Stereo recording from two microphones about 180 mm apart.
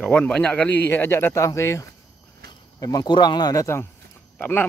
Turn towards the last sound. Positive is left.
turn(degrees=10)  # may be behind; listen again after turning